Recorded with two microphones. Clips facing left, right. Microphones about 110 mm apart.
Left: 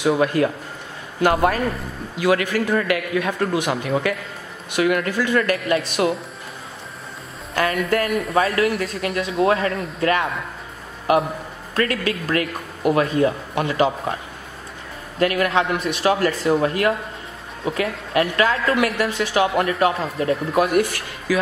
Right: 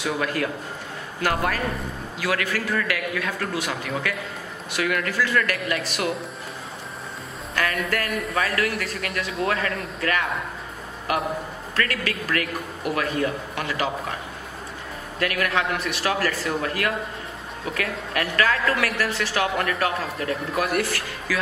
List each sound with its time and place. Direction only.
0.0 s a woman's voice: 25° left (ahead or behind)
4.7 s a woman's voice: 25° left (ahead or behind)
7.5 s a woman's voice: 30° left (ahead or behind)
15.1 s a woman's voice: 25° left (ahead or behind)
20.0 s speech: centre (ahead or behind)
20.6 s a woman's voice: 20° left (ahead or behind)